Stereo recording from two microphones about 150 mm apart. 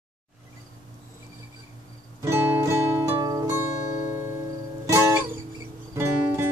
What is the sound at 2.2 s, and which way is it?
Music, 15° right (ahead or behind).